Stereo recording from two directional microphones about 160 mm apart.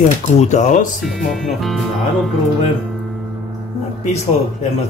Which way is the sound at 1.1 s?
Centre (ahead or behind).